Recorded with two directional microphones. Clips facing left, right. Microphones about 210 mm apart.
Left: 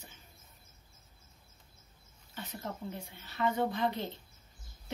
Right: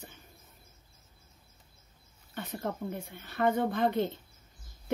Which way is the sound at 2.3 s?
55° right (ahead or behind).